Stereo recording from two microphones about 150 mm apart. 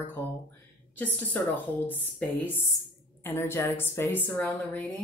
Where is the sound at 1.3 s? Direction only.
10° left (ahead or behind).